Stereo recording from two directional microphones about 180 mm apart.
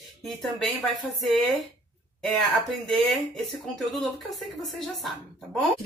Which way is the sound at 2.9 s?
Centre (ahead or behind).